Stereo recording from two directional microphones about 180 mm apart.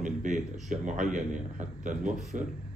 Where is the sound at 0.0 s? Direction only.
45° right (ahead or behind).